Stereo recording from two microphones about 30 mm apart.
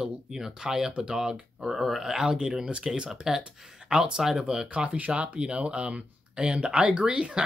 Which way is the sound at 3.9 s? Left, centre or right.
Right.